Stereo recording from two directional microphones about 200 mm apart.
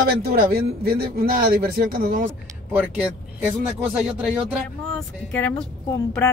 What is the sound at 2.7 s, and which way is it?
Speech, 10° right (ahead or behind).